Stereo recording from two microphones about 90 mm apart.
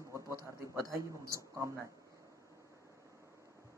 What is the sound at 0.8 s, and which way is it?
Speech, 35° right (ahead or behind).